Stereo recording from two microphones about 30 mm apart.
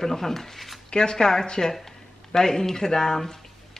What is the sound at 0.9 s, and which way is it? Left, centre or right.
A man's voice, left.